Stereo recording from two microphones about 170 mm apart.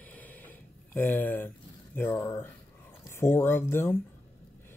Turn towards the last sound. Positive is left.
turn(degrees=15)  # may be behind; listen again after turning